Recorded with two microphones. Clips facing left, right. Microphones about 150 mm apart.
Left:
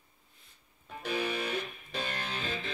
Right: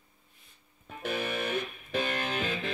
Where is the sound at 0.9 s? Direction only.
55° right (ahead or behind).